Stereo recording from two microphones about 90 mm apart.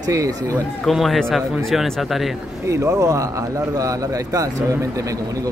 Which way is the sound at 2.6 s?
35° right (ahead or behind).